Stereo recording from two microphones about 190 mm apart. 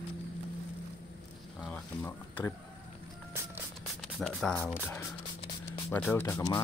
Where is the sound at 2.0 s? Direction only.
15° left (ahead or behind).